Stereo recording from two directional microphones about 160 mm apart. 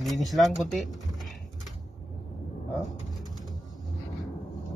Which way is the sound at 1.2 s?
Centre (ahead or behind).